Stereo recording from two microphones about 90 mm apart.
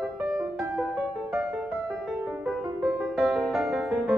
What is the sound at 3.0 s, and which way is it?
Music, centre (ahead or behind).